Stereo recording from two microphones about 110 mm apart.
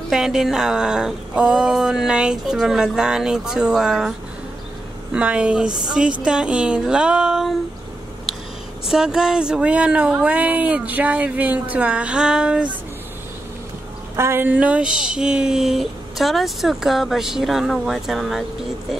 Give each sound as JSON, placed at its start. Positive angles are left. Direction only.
{"t": 0.1, "sound": "speech", "side_deg": -5}
{"t": 5.1, "sound": "speech", "side_deg": -10}
{"t": 8.8, "sound": "speech", "side_deg": -5}
{"t": 14.1, "sound": "speech", "side_deg": -25}